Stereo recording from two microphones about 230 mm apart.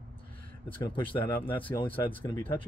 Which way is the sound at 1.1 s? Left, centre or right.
Centre.